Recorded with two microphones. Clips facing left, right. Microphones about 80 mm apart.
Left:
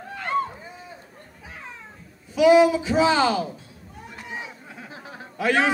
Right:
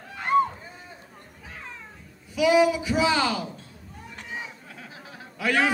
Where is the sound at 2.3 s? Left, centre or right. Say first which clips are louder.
Left 4 dB; left.